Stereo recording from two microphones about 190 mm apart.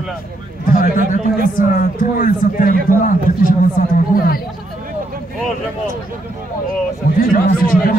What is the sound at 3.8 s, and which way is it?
Speech, 45° left (ahead or behind).